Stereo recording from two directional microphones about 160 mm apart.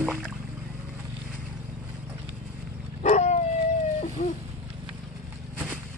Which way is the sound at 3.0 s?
50° left (ahead or behind).